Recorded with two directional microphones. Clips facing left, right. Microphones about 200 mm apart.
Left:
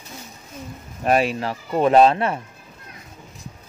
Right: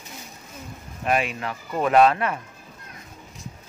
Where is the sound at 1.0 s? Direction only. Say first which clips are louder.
Left 5 dB; 35° left (ahead or behind).